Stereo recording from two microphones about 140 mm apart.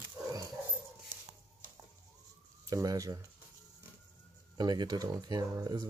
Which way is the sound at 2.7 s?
25° right (ahead or behind).